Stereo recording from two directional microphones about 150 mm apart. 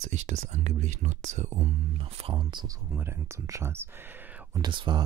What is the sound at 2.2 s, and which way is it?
Speech, 30° right (ahead or behind).